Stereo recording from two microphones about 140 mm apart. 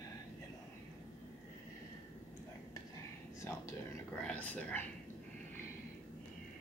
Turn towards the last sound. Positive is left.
turn(degrees=10)  # may be behind; listen again after turning